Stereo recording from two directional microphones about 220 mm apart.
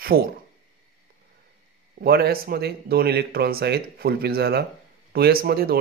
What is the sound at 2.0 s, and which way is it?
Speech, 45° right (ahead or behind).